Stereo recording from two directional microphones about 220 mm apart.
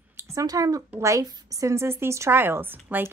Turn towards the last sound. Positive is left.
turn(degrees=-10)  # may be behind; listen again after turning